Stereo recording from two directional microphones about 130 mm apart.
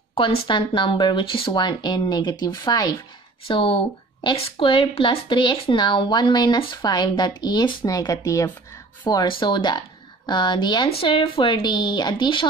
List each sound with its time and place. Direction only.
0.1 s a woman's voice: 45° left (ahead or behind)
3.4 s a woman's voice: 40° left (ahead or behind)